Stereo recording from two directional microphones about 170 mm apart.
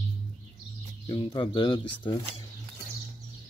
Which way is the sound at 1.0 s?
30° left (ahead or behind).